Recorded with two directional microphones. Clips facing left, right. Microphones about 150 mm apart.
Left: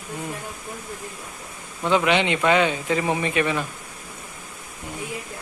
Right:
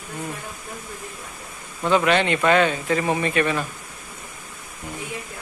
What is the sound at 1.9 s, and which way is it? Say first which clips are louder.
Speech: right 1 dB; 15° left (ahead or behind).